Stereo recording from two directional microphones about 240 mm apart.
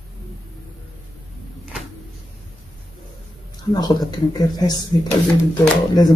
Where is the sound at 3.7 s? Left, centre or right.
Centre.